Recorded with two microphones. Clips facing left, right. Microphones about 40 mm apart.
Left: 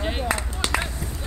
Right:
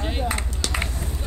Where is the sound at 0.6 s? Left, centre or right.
Left.